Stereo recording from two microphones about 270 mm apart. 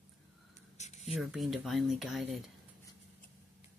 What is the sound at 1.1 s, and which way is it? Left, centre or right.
Speech, centre.